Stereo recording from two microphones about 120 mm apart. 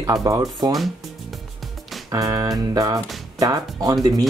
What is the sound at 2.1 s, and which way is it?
Speech, 30° right (ahead or behind).